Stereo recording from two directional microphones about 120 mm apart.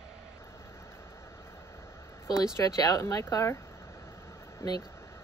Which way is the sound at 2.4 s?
30° left (ahead or behind).